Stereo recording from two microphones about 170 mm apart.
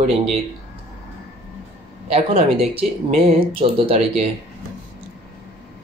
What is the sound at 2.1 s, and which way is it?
Speech, 35° right (ahead or behind).